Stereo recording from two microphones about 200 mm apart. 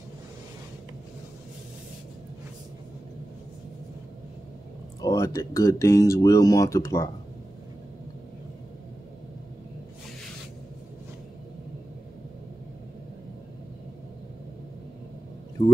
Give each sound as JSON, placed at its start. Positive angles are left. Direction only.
{"t": 5.0, "sound": "speech", "side_deg": 15}